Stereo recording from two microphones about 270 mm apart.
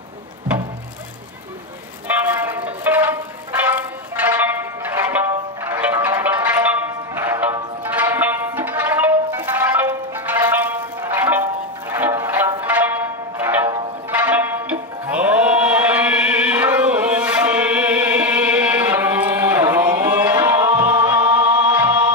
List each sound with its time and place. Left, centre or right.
2.0 s music: centre